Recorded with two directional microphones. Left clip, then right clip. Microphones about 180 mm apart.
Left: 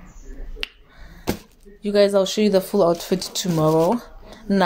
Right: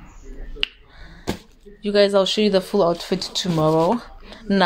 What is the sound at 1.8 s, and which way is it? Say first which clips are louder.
Speech: even; 10° left (ahead or behind).